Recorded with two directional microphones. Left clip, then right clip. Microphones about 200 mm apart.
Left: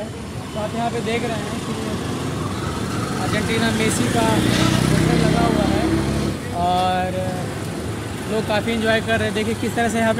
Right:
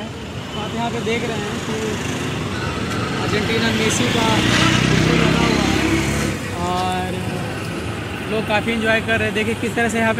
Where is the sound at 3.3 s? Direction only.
30° left (ahead or behind).